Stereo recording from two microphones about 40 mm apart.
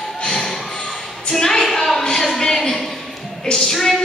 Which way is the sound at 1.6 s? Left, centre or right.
Centre.